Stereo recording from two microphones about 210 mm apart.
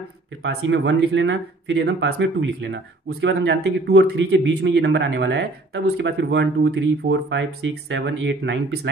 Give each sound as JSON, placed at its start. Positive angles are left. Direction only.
{"t": 0.4, "sound": "speech", "side_deg": -55}